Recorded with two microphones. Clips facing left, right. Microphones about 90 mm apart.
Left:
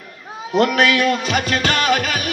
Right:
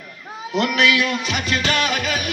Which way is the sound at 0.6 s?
45° left (ahead or behind).